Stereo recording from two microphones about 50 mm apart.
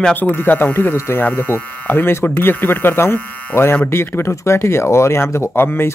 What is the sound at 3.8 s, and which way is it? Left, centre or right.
Speech, left.